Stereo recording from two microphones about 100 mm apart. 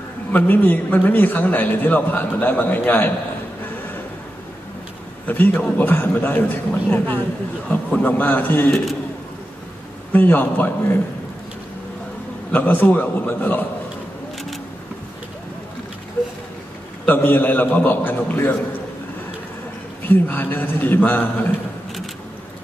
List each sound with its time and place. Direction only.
0.3 s a man's voice: 15° left (ahead or behind)
5.2 s a man's voice: 20° left (ahead or behind)
10.1 s a man's voice: 20° left (ahead or behind)
12.4 s a man's voice: 20° left (ahead or behind)
17.0 s a man's voice: 20° left (ahead or behind)
20.0 s a man's voice: 20° left (ahead or behind)